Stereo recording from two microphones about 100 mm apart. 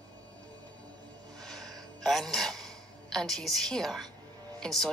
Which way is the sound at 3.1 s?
5° left (ahead or behind).